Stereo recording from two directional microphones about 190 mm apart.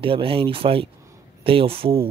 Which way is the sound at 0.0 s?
30° right (ahead or behind).